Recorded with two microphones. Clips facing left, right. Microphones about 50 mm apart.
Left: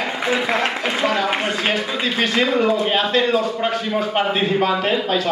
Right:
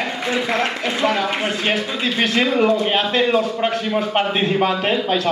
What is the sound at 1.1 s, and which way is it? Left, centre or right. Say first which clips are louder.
A man's voice: even; centre.